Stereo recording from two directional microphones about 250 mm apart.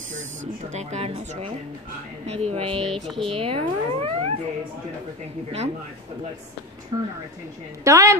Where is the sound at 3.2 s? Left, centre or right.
Right.